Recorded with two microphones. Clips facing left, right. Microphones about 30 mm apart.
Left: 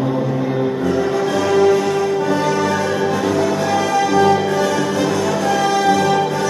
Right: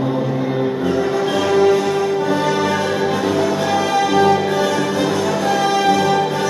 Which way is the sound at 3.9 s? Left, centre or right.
Centre.